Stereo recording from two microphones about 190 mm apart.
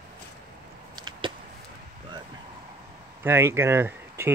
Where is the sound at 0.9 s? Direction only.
20° right (ahead or behind).